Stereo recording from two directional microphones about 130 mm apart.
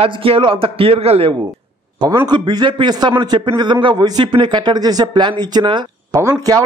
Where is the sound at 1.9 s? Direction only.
30° right (ahead or behind).